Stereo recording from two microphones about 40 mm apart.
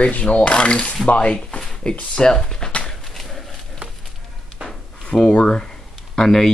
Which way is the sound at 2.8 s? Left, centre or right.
Centre.